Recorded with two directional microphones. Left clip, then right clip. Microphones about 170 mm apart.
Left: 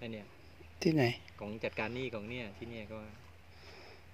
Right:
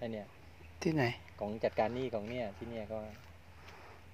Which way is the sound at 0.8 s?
55° left (ahead or behind).